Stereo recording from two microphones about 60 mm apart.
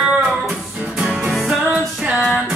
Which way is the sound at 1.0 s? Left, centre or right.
Centre.